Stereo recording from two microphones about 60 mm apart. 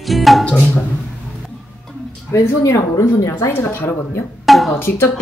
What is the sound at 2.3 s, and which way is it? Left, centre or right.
Speech, left.